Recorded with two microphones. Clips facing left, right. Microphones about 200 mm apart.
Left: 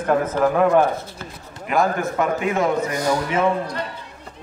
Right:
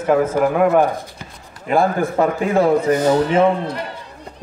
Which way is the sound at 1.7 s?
30° right (ahead or behind).